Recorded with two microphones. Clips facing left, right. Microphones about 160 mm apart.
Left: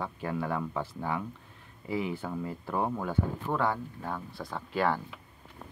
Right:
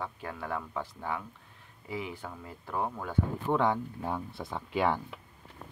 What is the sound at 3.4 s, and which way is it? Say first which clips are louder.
Speech: right 5 dB; 20° right (ahead or behind).